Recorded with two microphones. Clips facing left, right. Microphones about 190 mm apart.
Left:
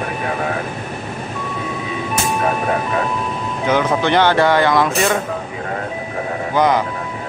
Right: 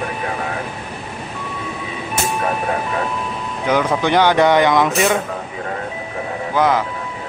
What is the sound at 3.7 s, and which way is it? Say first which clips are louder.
Speech: even; 10° right (ahead or behind).